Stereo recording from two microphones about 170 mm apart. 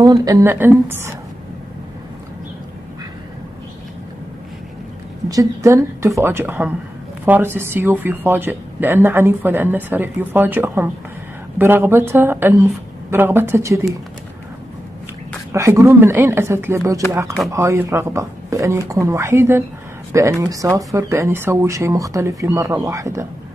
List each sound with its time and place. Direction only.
0.0 s speech: 25° right (ahead or behind)
5.3 s speech: 20° right (ahead or behind)
15.5 s speech: 15° right (ahead or behind)